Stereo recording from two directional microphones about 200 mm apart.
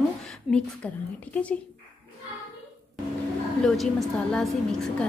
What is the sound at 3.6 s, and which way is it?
Cutlery, centre (ahead or behind).